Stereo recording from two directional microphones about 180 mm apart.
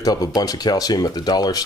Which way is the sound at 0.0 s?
20° left (ahead or behind).